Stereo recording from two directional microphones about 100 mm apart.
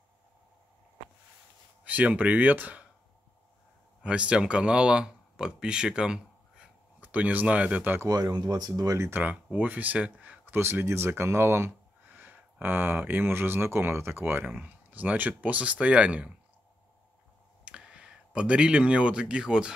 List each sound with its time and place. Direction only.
1.9 s speech: 15° right (ahead or behind)
4.0 s speech: 10° right (ahead or behind)
8.1 s speech: 40° right (ahead or behind)
9.2 s speech: 15° right (ahead or behind)
17.6 s speech: 10° right (ahead or behind)